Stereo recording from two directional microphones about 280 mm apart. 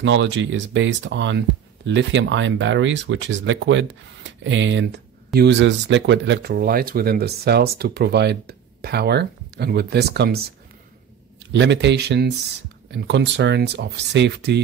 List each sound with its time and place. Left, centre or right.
0.0 s speech: right
11.5 s speech: right